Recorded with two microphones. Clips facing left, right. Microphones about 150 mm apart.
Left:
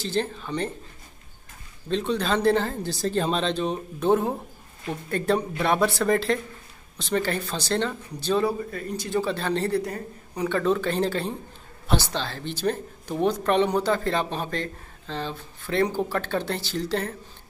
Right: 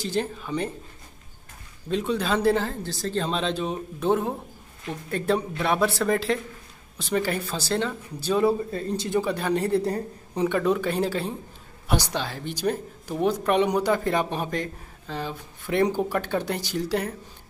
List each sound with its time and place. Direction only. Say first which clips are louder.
0.0 s speech: even; 10° right (ahead or behind)
1.9 s speech: even; 10° right (ahead or behind)
2.8 s speech: left 3 dB; 15° left (ahead or behind)
3.3 s speech: left 1 dB; 5° right (ahead or behind)
8.5 s speech: right 4 dB; 25° right (ahead or behind)
9.8 s a woman's voice: right 3 dB; 30° right (ahead or behind)
10.5 s speech: left 2 dB; 10° right (ahead or behind)